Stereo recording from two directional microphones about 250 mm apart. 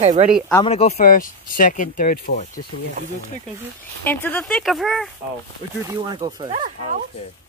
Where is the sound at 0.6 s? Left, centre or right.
Left.